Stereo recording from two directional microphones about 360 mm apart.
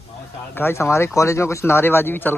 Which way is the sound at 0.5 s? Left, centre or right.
Centre.